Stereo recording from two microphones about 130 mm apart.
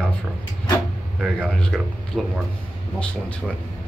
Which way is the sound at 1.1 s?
Centre (ahead or behind).